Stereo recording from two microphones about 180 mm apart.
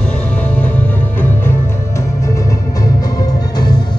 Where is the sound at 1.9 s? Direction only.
15° left (ahead or behind).